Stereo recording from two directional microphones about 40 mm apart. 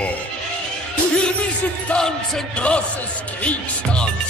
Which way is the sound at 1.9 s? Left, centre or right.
Left.